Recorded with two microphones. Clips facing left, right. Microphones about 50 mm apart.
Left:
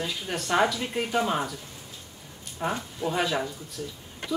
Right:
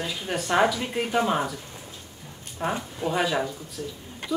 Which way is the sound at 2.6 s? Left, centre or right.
Centre.